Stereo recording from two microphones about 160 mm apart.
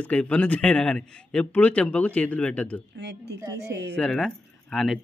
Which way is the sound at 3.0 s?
90° right.